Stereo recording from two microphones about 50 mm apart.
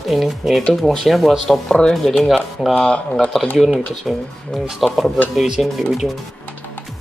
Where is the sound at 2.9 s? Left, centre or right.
Left.